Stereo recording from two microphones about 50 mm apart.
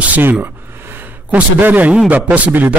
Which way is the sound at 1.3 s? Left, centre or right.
Right.